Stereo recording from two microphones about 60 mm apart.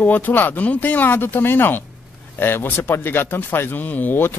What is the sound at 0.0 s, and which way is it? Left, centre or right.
Speech, left.